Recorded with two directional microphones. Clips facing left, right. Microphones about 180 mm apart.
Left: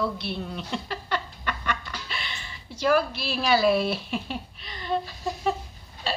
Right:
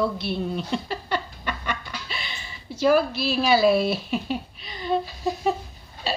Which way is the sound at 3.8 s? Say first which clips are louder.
Right 4 dB; 5° right (ahead or behind).